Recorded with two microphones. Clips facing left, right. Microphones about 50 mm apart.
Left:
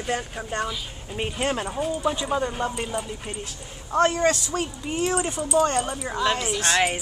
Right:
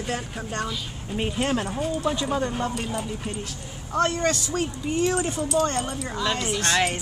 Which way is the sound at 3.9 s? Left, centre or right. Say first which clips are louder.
Left 3 dB; left.